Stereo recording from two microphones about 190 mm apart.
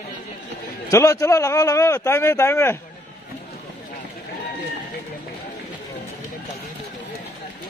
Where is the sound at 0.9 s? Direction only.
15° left (ahead or behind).